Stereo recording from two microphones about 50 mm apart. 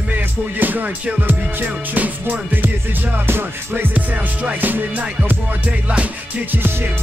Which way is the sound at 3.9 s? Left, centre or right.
Right.